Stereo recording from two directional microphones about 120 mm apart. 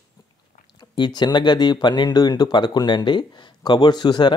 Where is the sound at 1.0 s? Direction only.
35° left (ahead or behind).